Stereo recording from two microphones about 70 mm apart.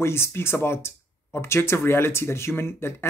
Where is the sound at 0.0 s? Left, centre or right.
Left.